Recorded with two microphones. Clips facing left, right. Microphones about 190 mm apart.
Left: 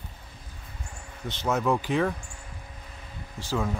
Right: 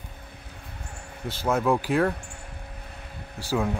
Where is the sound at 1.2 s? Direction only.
10° right (ahead or behind).